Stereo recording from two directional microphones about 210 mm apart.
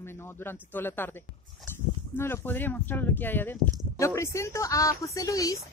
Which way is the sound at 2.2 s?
10° left (ahead or behind).